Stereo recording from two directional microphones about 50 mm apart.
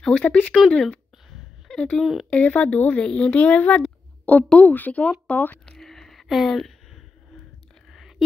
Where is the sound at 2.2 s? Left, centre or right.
Left.